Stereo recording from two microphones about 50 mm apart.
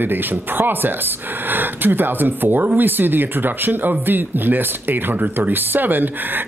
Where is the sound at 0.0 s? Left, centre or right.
Right.